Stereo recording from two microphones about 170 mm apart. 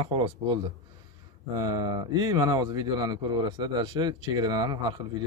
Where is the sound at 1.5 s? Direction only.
25° right (ahead or behind).